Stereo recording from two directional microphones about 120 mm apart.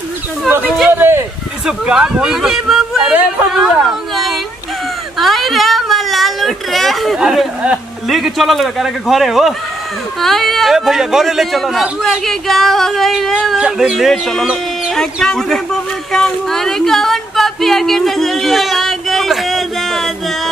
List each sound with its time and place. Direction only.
0.5 s speech: 15° right (ahead or behind)
0.9 s a sound: 20° right (ahead or behind)
1.7 s speech: 5° right (ahead or behind)
5.2 s speech: centre (ahead or behind)